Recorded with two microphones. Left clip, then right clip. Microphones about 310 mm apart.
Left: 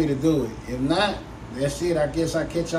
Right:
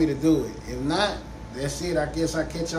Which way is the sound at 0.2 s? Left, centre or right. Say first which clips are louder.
Even; centre.